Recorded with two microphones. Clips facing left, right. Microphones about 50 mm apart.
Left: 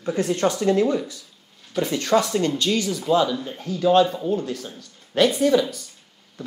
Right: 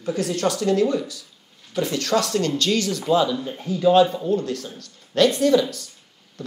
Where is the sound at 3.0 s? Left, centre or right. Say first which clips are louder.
Even; centre.